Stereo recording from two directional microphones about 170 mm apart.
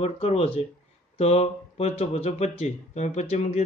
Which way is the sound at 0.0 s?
35° left (ahead or behind).